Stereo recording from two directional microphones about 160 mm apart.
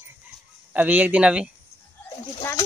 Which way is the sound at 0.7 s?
10° right (ahead or behind).